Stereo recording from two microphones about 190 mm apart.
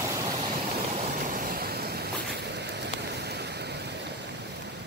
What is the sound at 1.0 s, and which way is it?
Vehicle, 45° right (ahead or behind).